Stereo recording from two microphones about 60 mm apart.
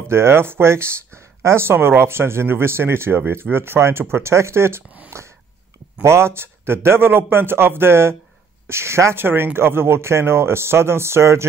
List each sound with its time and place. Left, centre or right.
0.1 s speech: right
5.1 s a sound: right
6.0 s speech: right